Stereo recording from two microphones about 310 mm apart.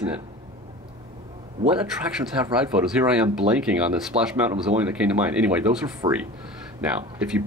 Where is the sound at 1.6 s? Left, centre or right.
Centre.